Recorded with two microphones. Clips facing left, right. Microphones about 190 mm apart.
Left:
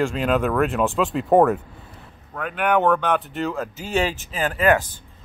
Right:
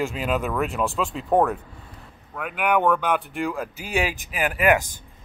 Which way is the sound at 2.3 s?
10° right (ahead or behind).